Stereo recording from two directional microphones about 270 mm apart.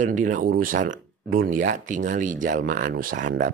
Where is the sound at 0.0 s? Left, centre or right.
Right.